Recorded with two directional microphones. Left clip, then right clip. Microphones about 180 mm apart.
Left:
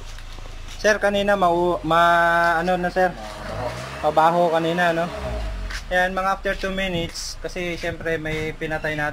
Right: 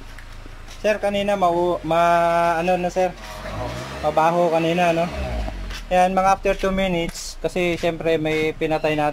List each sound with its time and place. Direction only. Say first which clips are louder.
0.8 s mantra: left 2 dB; 5° right (ahead or behind)
7.4 s speech: right 7 dB; 20° right (ahead or behind)